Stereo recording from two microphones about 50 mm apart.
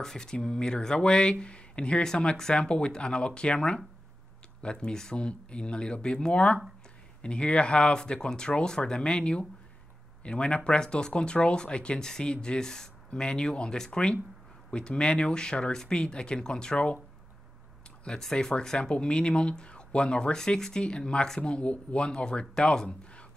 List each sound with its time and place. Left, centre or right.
0.0 s speech: centre
18.2 s speech: centre